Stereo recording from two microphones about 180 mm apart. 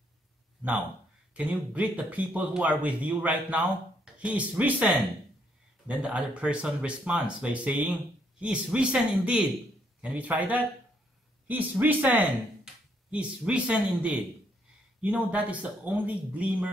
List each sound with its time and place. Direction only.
1.3 s speech: 10° right (ahead or behind)